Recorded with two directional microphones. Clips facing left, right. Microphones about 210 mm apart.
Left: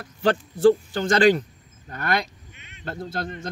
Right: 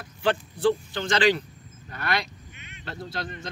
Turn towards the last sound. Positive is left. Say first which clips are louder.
# left 4 dB
turn(degrees=50)  # may be behind; listen again after turning